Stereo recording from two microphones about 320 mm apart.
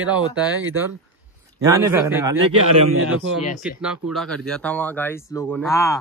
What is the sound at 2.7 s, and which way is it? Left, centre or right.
Speech, right.